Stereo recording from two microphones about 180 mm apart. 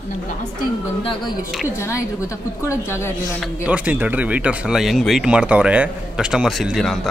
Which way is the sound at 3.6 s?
10° right (ahead or behind).